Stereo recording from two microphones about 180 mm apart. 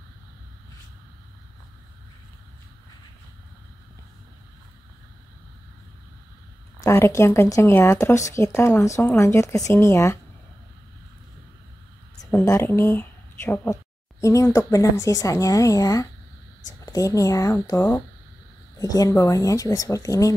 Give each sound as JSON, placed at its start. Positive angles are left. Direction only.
{"t": 6.8, "sound": "speech", "side_deg": 15}
{"t": 12.2, "sound": "speech", "side_deg": 15}